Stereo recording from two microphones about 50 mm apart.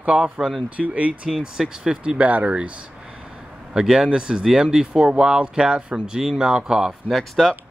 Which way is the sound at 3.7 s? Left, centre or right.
Centre.